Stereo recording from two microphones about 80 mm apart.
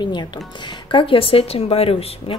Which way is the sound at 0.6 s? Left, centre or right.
Left.